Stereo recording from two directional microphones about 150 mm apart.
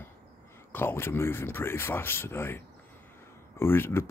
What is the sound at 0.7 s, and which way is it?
Speech, 15° left (ahead or behind).